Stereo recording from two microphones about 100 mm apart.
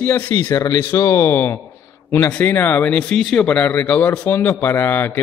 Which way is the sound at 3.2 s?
Centre (ahead or behind).